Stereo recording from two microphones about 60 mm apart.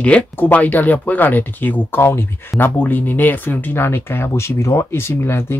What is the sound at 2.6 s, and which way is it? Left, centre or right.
Speech, left.